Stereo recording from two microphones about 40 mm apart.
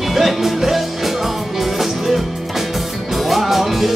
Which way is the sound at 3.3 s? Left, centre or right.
Centre.